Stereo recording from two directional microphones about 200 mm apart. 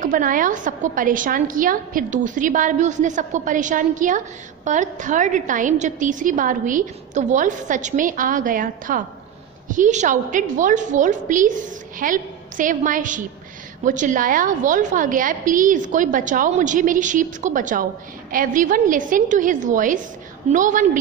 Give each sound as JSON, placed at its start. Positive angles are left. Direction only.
{"t": 0.0, "sound": "a woman's voice", "side_deg": -45}